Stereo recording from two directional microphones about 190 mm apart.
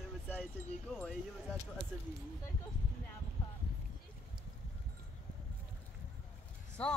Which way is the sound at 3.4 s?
25° left (ahead or behind).